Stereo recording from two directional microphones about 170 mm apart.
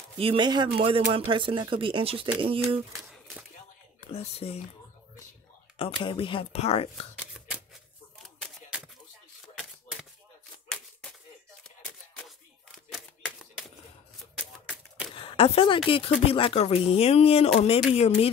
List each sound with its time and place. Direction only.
0.2 s speech: 30° right (ahead or behind)
4.1 s speech: 35° left (ahead or behind)
5.8 s speech: 30° left (ahead or behind)
7.2 s shuffling cards: 5° right (ahead or behind)
8.4 s a sound: centre (ahead or behind)
15.1 s a sound: 35° left (ahead or behind)
15.9 s speech: 35° left (ahead or behind)